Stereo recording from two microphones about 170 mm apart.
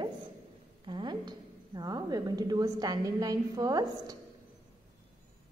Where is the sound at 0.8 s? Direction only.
25° right (ahead or behind).